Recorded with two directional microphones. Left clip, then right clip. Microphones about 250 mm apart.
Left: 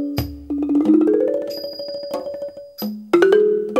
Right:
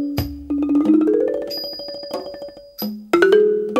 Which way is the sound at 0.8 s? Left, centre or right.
Centre.